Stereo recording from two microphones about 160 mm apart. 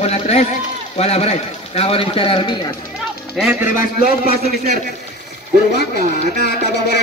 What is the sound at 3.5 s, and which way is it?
Speech, 15° right (ahead or behind).